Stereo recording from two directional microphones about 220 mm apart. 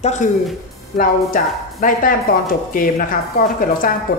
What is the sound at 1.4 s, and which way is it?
A woman's voice, 40° left (ahead or behind).